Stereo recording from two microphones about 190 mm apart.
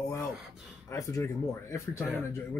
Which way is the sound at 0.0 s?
20° left (ahead or behind).